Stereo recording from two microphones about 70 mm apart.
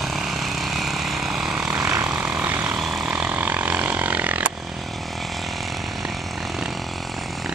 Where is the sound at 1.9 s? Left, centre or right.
Right.